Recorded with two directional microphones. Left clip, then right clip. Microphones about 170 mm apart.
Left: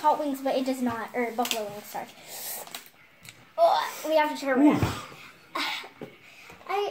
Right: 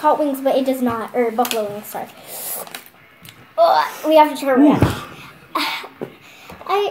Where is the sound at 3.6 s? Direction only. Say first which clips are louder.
Right 8 dB; 15° right (ahead or behind).